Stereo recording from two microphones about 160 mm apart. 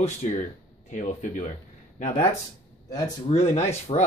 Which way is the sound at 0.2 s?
45° left (ahead or behind).